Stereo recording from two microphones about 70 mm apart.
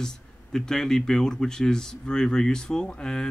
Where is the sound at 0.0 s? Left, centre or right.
Centre.